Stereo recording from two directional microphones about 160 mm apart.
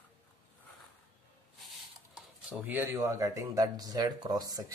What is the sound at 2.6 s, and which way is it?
Speech, 10° right (ahead or behind).